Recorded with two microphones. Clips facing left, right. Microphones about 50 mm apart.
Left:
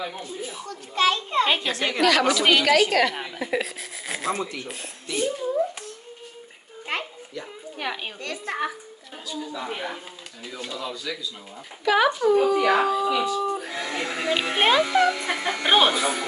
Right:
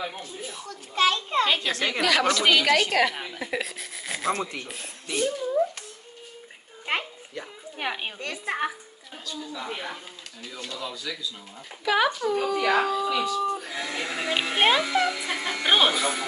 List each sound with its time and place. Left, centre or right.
0.4 s a woman's voice: centre
1.4 s a woman's voice: left
2.0 s a woman's voice: centre
7.7 s a woman's voice: centre
9.3 s a woman's voice: centre